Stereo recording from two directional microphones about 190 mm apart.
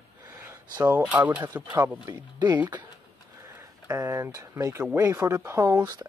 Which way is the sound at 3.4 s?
15° right (ahead or behind).